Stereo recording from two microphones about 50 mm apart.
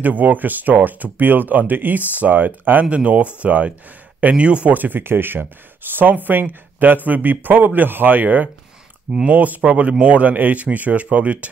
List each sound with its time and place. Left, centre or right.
0.0 s speech: right
4.7 s speech: right